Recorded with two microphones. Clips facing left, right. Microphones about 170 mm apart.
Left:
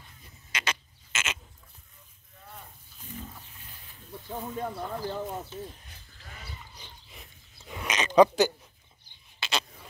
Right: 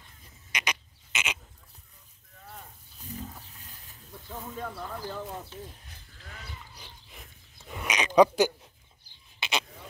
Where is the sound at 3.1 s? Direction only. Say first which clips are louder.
Right 2 dB; 35° right (ahead or behind).